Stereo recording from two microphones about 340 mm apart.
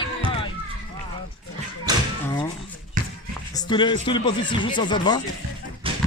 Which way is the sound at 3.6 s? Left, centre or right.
Centre.